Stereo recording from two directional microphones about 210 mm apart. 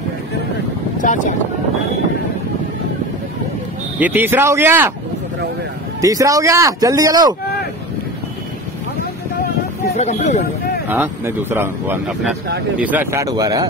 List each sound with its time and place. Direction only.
1.0 s speech: 40° left (ahead or behind)
4.0 s speech: 10° right (ahead or behind)
5.9 s speech: 15° right (ahead or behind)
9.9 s speech: 30° left (ahead or behind)
10.9 s speech: 10° right (ahead or behind)